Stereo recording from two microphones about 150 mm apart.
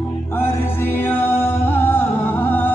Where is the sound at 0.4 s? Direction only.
15° left (ahead or behind).